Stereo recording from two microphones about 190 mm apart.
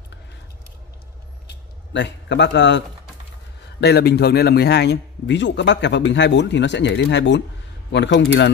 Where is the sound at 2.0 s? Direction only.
65° left (ahead or behind).